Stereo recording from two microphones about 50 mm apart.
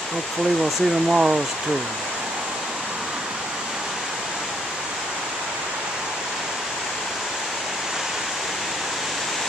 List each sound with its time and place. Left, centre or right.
1.1 s speech: centre